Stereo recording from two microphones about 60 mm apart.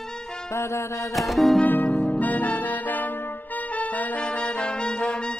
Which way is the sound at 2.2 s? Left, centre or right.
Left.